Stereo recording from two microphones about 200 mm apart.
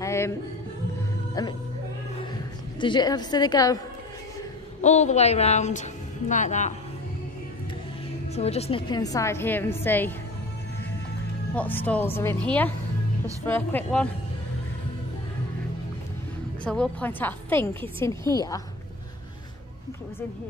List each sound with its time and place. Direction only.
0.0 s a sound: 15° left (ahead or behind)
2.8 s a woman's voice: 20° left (ahead or behind)
4.8 s a woman's voice: 35° left (ahead or behind)
8.4 s a woman's voice: 30° left (ahead or behind); by 10.1 s 10° left (ahead or behind)
11.5 s a woman's voice: 10° left (ahead or behind)
16.6 s a woman's voice: 5° left (ahead or behind)